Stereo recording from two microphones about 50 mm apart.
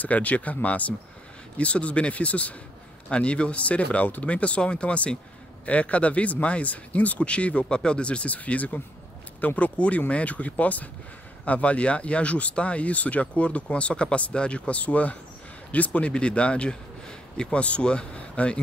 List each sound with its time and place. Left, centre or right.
0.0 s speech: left